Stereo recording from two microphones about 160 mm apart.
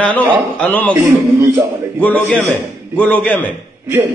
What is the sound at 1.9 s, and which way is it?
A man's voice, 10° left (ahead or behind).